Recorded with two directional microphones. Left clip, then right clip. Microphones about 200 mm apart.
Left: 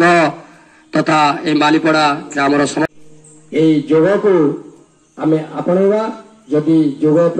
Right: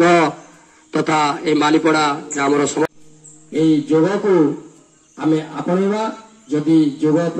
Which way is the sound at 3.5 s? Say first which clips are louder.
Left 3 dB; 40° right (ahead or behind).